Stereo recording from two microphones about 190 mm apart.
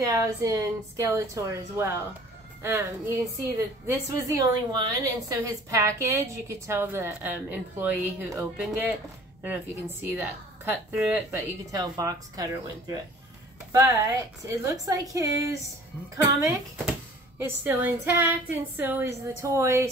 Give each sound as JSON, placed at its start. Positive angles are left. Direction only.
{"t": 0.0, "sound": "a woman's voice", "side_deg": -15}
{"t": 10.0, "sound": "a woman's voice", "side_deg": -10}